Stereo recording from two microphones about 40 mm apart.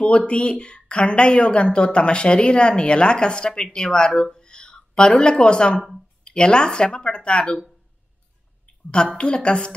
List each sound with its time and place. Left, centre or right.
0.0 s a woman's voice: left
8.9 s a woman's voice: left